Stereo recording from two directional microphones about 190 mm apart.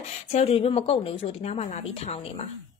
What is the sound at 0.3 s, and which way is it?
Speech, 35° left (ahead or behind).